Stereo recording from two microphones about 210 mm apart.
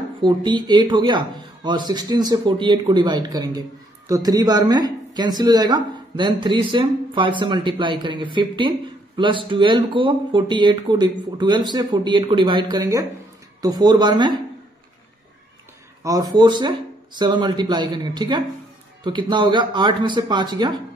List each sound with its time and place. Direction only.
0.2 s speech: 20° right (ahead or behind)
16.0 s speech: 15° right (ahead or behind)